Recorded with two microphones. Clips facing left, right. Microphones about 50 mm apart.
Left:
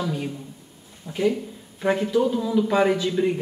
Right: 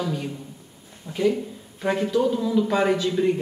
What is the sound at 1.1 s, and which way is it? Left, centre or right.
Speech, right.